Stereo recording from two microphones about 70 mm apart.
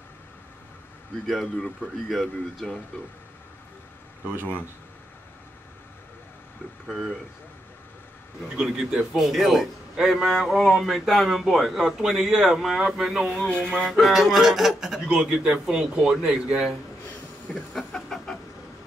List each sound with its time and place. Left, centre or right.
1.2 s a man's voice: centre
6.9 s a man's voice: centre
8.5 s a man's voice: centre
13.3 s a man's voice: centre
17.7 s chicken: centre